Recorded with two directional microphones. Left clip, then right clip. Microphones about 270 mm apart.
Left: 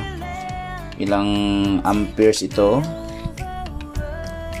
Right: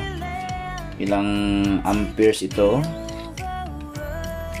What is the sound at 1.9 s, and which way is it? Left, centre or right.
Speech, centre.